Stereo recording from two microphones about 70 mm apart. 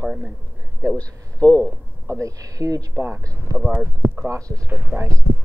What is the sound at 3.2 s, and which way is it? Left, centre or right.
Speech, right.